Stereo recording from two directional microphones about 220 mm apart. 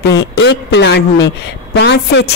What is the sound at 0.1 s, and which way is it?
A woman's voice, 50° left (ahead or behind).